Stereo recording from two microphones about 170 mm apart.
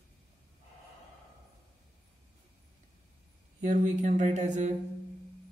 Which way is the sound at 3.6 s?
45° right (ahead or behind).